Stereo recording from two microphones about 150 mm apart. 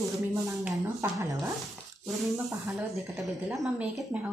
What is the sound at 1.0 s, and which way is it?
Speech, 20° right (ahead or behind).